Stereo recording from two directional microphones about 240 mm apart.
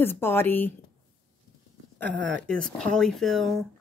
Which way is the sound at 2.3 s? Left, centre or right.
Centre.